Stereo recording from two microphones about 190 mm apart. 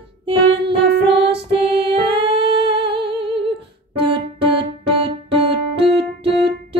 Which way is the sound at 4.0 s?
25° right (ahead or behind).